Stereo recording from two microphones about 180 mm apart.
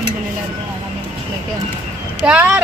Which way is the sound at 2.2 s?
10° right (ahead or behind).